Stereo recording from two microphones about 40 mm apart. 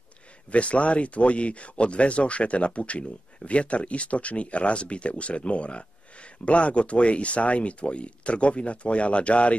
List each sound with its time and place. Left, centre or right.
0.5 s speech: left